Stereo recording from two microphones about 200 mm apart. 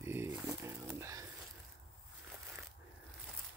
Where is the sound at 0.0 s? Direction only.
10° right (ahead or behind).